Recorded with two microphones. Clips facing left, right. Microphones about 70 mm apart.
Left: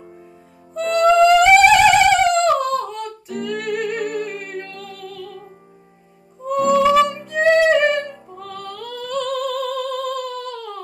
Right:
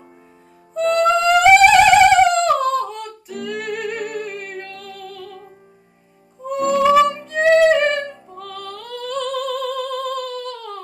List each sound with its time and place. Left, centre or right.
0.7 s music: centre
6.4 s music: centre